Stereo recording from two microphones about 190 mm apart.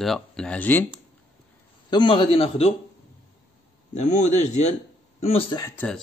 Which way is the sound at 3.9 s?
40° left (ahead or behind).